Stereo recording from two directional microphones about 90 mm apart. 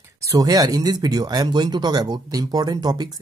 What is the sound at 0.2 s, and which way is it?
Speech, 40° right (ahead or behind).